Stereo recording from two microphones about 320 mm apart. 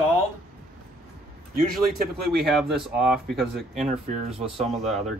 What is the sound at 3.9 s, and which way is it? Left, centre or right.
Speech, centre.